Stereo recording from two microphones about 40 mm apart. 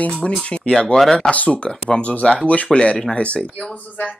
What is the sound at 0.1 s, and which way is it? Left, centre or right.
Speech, centre.